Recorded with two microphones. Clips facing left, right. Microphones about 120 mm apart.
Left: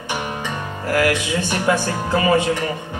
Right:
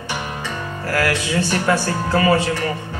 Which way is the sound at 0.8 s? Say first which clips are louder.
Left 2 dB; 20° left (ahead or behind).